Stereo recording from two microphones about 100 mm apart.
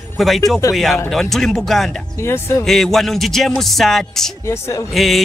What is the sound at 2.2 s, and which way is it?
Speech, 25° left (ahead or behind).